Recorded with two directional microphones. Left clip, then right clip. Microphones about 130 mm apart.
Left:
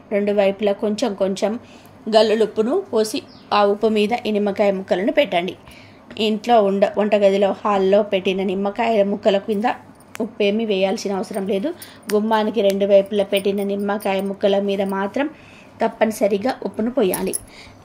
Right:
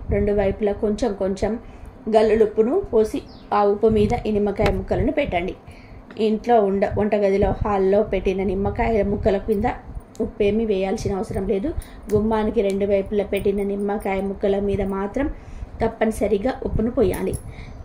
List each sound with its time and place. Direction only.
0.1 s a woman's voice: 25° left (ahead or behind)
2.2 s speech: 55° left (ahead or behind)
3.6 s a woman's voice: 25° left (ahead or behind)